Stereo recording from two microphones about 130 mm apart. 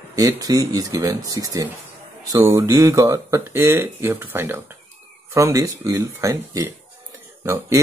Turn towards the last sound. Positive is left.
turn(degrees=-20)  # may be behind; listen again after turning